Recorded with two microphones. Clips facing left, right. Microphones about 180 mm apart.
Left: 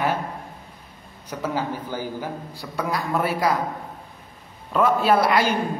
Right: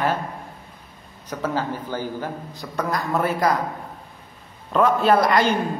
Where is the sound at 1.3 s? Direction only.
10° left (ahead or behind).